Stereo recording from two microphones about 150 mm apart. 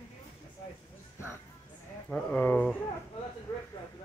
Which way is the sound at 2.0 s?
10° left (ahead or behind).